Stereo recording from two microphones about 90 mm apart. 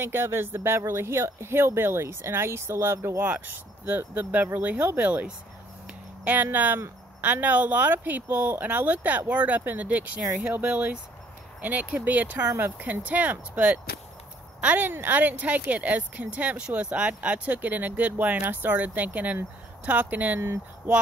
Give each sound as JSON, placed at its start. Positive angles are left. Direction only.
{"t": 0.0, "sound": "speech", "side_deg": -30}
{"t": 3.3, "sound": "speech", "side_deg": -15}